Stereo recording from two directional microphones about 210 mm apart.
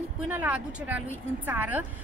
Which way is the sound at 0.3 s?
5° right (ahead or behind).